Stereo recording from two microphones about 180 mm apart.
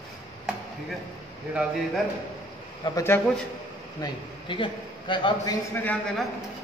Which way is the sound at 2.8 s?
15° left (ahead or behind).